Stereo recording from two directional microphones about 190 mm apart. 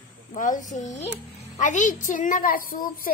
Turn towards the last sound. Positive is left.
turn(degrees=50)  # may be behind; listen again after turning